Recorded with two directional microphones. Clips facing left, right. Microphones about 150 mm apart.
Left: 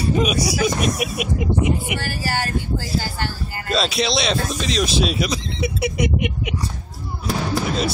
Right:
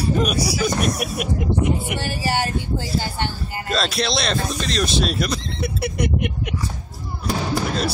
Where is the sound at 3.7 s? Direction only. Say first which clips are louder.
Left 2 dB; centre (ahead or behind).